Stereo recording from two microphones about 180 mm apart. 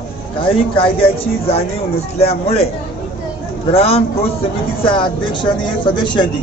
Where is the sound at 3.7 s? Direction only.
35° left (ahead or behind).